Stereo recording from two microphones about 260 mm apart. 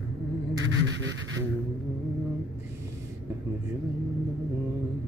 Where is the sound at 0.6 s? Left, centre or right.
Right.